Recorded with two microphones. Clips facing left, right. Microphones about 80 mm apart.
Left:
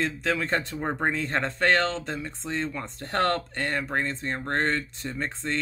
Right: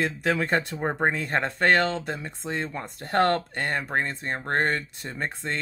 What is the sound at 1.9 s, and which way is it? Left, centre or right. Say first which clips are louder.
Speech: right 1 dB; centre.